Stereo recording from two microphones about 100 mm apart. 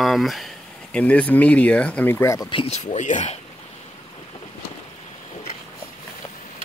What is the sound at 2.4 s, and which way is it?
Speech, 75° left (ahead or behind).